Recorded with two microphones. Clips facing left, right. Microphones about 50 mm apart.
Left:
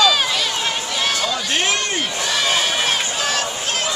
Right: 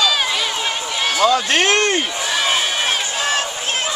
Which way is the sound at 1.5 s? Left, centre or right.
Right.